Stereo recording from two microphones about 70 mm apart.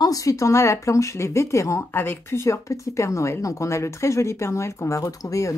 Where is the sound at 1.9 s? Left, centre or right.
Left.